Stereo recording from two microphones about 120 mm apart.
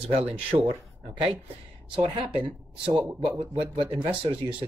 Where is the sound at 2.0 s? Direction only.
45° right (ahead or behind).